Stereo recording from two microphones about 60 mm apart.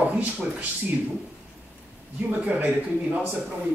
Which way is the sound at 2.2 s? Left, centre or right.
Right.